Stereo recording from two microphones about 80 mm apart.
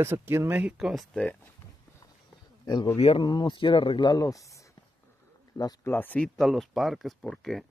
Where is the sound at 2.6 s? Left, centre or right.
Left.